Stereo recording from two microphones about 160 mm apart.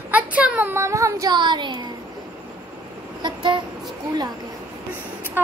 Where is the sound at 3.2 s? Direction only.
30° right (ahead or behind).